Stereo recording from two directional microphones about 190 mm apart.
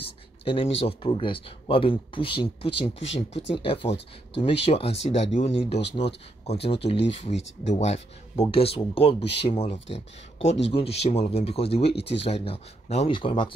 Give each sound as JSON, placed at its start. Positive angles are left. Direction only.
{"t": 0.0, "sound": "speech", "side_deg": 30}
{"t": 2.9, "sound": "speech", "side_deg": 75}
{"t": 3.5, "sound": "speech", "side_deg": 25}
{"t": 11.8, "sound": "speech", "side_deg": 60}
{"t": 12.3, "sound": "speech", "side_deg": 30}